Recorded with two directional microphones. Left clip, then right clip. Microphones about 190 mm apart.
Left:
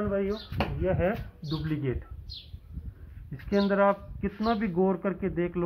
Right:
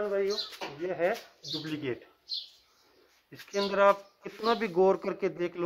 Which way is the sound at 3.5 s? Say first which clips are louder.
Even; 45° right (ahead or behind).